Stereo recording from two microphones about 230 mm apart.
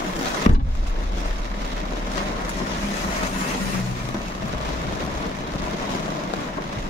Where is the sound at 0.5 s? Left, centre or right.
Left.